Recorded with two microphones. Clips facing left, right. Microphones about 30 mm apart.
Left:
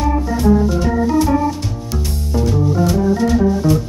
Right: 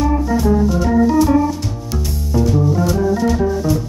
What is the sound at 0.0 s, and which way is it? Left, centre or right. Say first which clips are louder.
Organ: even; centre.